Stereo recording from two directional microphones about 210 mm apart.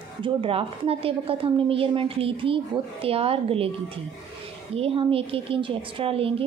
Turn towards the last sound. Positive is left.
turn(degrees=-25)  # may be behind; listen again after turning